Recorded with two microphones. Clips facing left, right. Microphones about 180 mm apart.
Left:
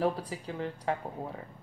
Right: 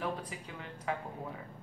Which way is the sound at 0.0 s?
35° left (ahead or behind).